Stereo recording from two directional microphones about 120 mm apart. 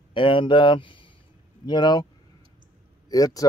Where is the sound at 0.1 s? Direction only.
45° left (ahead or behind).